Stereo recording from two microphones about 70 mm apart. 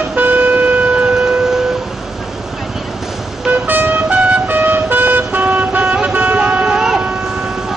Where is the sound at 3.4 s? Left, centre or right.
Right.